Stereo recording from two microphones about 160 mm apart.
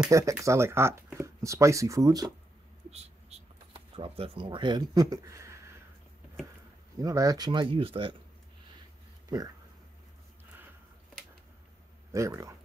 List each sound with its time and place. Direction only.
0.1 s speech: 20° right (ahead or behind)
2.9 s a sound: 40° right (ahead or behind); by 5.6 s 20° right (ahead or behind)
7.0 s speech: 20° right (ahead or behind)
12.1 s speech: 20° right (ahead or behind)